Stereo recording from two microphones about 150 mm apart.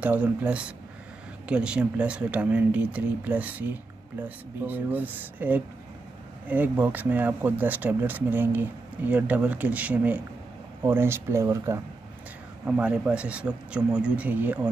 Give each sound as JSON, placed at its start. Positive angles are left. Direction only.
{"t": 0.0, "sound": "speech", "side_deg": -10}
{"t": 12.6, "sound": "speech", "side_deg": -10}